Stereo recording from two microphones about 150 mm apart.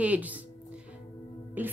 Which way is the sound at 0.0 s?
10° right (ahead or behind).